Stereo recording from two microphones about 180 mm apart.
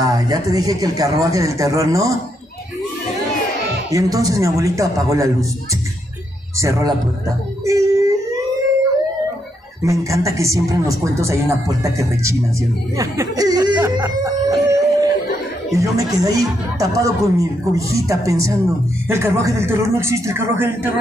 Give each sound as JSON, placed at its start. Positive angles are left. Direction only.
{"t": 0.0, "sound": "speech", "side_deg": -20}
{"t": 3.9, "sound": "speech", "side_deg": -20}
{"t": 6.6, "sound": "speech", "side_deg": -20}
{"t": 7.6, "sound": "a sound", "side_deg": -15}
{"t": 9.8, "sound": "speech", "side_deg": -15}
{"t": 12.9, "sound": "chicken", "side_deg": -15}
{"t": 15.7, "sound": "speech", "side_deg": -20}